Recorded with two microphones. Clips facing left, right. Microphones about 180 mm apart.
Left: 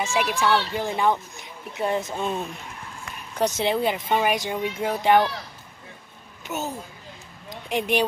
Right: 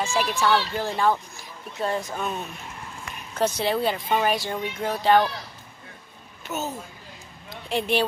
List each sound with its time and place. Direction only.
0.0 s speech: 10° left (ahead or behind)
0.4 s speech: centre (ahead or behind)
0.7 s speech: 15° left (ahead or behind)
6.4 s speech: 15° left (ahead or behind)
7.4 s a sound: 15° left (ahead or behind)